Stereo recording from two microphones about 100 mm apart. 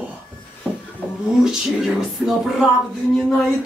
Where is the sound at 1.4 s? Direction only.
5° right (ahead or behind).